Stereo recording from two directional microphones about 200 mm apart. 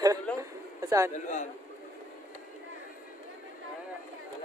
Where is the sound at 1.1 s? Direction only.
35° left (ahead or behind).